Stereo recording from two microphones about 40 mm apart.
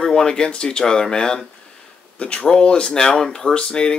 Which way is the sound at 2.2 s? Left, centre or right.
Left.